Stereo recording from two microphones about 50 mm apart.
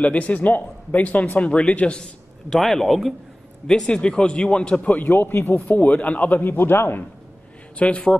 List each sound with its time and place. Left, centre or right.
0.0 s a man's voice: left
1.4 s speech: left
2.5 s speech: centre
3.6 s speech: centre
4.8 s a man's voice: left
6.4 s a man's voice: left
7.7 s speech: left